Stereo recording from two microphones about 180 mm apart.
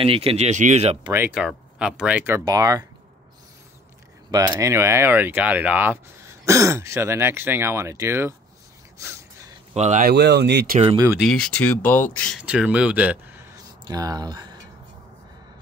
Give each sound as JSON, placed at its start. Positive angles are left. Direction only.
{"t": 0.0, "sound": "speech", "side_deg": -30}
{"t": 1.1, "sound": "speech", "side_deg": -10}
{"t": 4.3, "sound": "speech", "side_deg": -20}
{"t": 8.9, "sound": "gasp", "side_deg": -15}
{"t": 9.8, "sound": "speech", "side_deg": -40}
{"t": 10.0, "sound": "speech", "side_deg": -65}
{"t": 11.1, "sound": "speech", "side_deg": 5}
{"t": 12.4, "sound": "speech", "side_deg": -5}